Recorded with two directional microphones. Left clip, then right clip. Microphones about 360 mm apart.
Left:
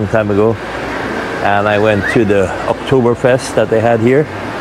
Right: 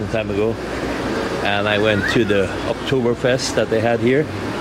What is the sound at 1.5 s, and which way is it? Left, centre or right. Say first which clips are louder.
Speech: left 7 dB; centre.